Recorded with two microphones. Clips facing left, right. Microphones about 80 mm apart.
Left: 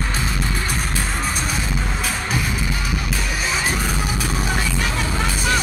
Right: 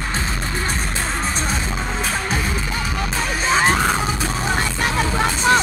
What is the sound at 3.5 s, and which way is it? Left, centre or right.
Music, right.